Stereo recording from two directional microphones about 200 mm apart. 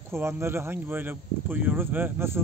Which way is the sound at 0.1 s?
10° right (ahead or behind).